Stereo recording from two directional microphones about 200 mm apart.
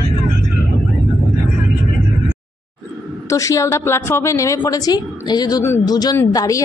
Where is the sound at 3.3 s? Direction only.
15° left (ahead or behind).